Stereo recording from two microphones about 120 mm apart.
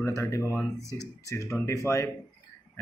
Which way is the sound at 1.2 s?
25° left (ahead or behind).